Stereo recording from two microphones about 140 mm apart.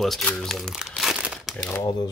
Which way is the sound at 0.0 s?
5° left (ahead or behind).